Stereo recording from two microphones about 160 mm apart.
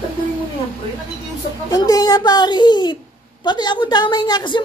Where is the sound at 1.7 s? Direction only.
25° left (ahead or behind).